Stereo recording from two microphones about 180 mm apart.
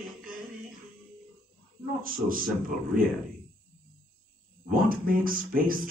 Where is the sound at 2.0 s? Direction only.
50° right (ahead or behind).